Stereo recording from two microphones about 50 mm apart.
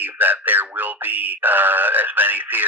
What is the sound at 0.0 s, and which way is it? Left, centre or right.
Speech, right.